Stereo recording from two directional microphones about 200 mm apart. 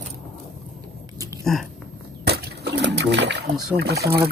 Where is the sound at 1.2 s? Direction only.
15° right (ahead or behind).